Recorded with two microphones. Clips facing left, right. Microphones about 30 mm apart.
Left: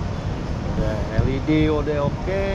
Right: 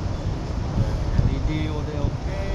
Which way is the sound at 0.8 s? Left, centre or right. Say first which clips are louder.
Left 4 dB; left.